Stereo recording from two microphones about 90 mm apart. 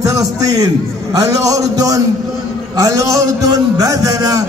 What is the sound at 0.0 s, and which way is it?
A man's voice, 40° right (ahead or behind).